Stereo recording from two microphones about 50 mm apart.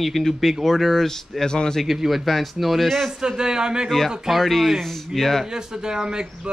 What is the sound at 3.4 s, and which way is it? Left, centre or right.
Speech, centre.